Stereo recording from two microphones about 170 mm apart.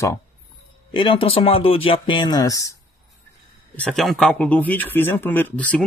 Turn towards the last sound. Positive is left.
turn(degrees=10)  # may be behind; listen again after turning